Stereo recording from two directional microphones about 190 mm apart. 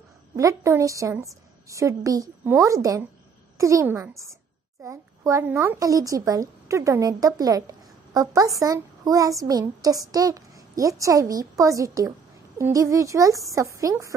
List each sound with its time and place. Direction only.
0.4 s speech: 15° right (ahead or behind)